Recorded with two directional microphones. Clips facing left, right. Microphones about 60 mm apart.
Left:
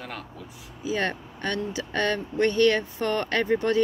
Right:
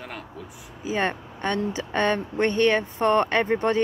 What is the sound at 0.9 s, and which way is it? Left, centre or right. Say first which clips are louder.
Speech: right 2 dB; right.